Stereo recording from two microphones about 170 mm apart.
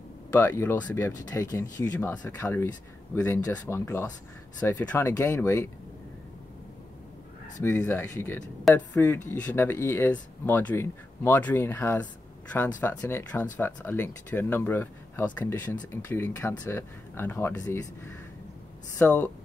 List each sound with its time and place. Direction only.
0.4 s speech: 10° left (ahead or behind)
7.6 s speech: 15° left (ahead or behind)
18.9 s speech: 10° left (ahead or behind)